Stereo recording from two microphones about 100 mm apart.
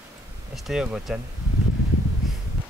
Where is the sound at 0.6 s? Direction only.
5° right (ahead or behind).